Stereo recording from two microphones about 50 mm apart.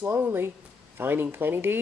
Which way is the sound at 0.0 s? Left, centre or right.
Right.